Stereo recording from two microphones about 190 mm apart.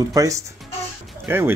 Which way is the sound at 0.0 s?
15° right (ahead or behind).